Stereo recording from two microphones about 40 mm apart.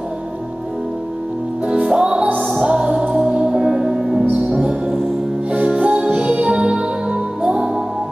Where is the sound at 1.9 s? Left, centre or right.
Right.